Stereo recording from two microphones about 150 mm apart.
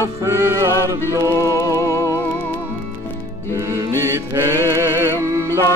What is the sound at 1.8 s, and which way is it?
Music, 20° left (ahead or behind).